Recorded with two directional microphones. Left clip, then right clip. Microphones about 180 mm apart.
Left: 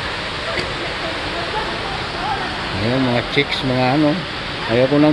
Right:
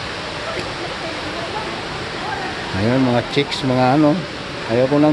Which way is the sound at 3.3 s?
20° right (ahead or behind).